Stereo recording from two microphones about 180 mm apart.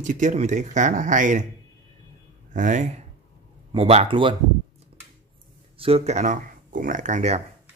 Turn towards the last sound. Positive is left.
turn(degrees=-35)  # may be behind; listen again after turning